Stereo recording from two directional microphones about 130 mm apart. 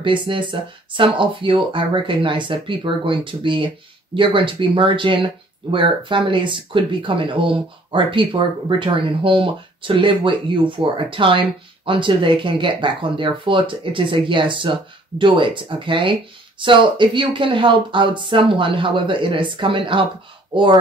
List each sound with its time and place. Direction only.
0.0 s speech: 40° right (ahead or behind)